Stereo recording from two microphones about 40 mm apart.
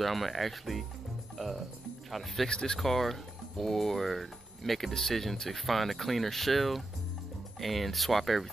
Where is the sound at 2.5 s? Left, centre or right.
Centre.